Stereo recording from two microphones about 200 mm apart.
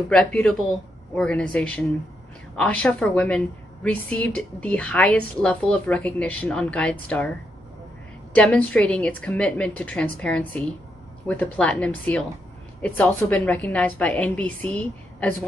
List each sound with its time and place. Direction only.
0.1 s a woman's voice: 5° left (ahead or behind)
8.4 s a woman's voice: 5° left (ahead or behind)